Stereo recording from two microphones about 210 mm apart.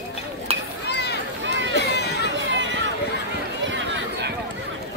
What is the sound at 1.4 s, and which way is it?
Run, 60° right (ahead or behind).